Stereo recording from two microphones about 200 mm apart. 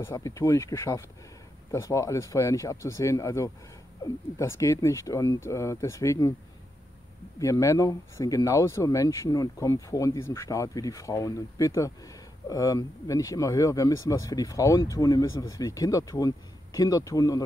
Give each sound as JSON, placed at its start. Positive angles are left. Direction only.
{"t": 0.0, "sound": "speech", "side_deg": 15}
{"t": 7.3, "sound": "speech", "side_deg": 15}